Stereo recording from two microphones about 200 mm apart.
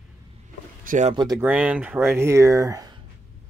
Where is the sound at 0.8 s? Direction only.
40° right (ahead or behind).